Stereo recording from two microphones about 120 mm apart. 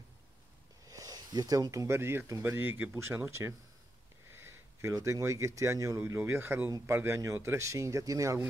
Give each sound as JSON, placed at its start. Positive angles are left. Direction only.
{"t": 0.8, "sound": "speech", "side_deg": -30}